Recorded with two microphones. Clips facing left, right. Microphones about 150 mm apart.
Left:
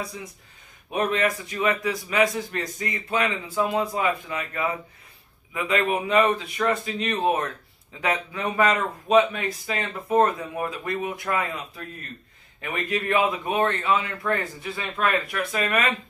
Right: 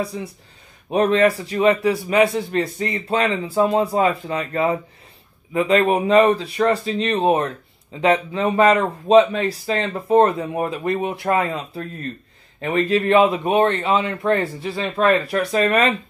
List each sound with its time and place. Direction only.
0.0 s a man's voice: 30° right (ahead or behind)